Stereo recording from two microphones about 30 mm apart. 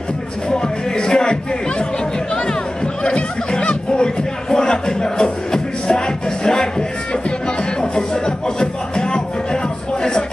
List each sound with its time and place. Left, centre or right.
0.5 s music: left
3.0 s music: left